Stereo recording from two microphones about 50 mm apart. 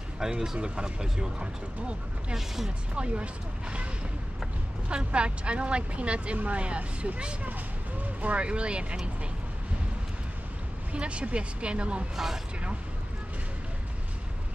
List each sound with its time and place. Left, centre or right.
0.2 s speech: centre
2.3 s speech: centre
2.9 s speech: right
4.8 s speech: right
10.9 s speech: right